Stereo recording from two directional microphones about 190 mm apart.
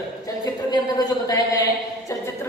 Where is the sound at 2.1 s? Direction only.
15° left (ahead or behind).